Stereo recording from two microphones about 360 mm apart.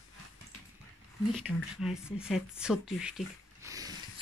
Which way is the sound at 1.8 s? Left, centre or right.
Centre.